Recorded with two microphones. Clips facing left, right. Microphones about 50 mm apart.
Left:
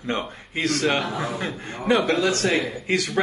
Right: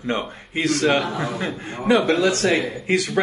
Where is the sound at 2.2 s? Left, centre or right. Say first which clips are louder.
Right 3 dB; right.